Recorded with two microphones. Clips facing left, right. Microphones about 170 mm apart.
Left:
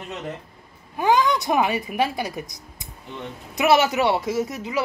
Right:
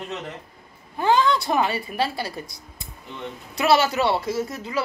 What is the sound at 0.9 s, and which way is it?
A woman's voice, 15° left (ahead or behind).